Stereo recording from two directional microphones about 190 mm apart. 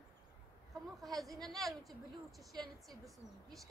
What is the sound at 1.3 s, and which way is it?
A woman's voice, centre (ahead or behind).